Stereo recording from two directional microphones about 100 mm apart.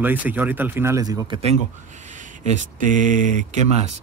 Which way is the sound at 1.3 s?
60° right (ahead or behind).